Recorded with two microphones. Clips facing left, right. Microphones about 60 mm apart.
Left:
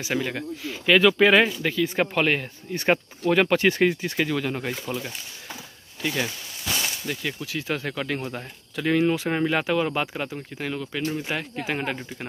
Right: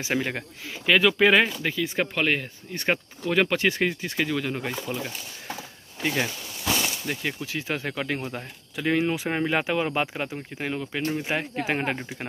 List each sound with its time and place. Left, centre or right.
0.0 s speech: right
0.8 s speech: centre
6.0 s speech: right
8.2 s speech: centre; by 12.1 s right